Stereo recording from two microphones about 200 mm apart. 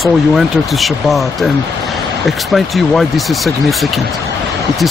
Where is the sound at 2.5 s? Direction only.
Centre (ahead or behind).